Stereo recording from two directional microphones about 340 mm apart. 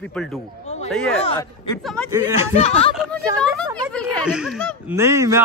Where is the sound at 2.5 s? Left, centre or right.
Centre.